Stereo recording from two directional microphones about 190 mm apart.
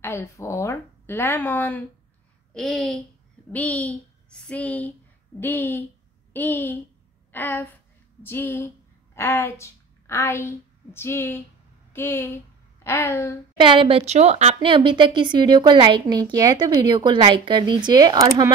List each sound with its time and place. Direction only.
0.0 s speech: 15° left (ahead or behind)
13.6 s a woman's voice: 25° right (ahead or behind)